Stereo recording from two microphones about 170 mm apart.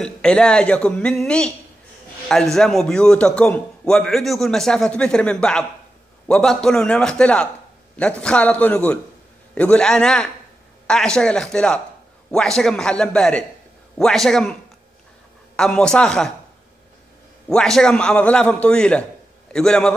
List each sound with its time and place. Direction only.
0.0 s a man's voice: 5° left (ahead or behind)
2.5 s a man's voice: centre (ahead or behind)
15.5 s a man's voice: 5° left (ahead or behind)
17.5 s a man's voice: 5° left (ahead or behind)